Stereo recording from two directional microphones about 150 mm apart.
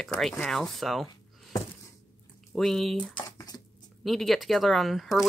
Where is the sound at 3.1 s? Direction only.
25° left (ahead or behind).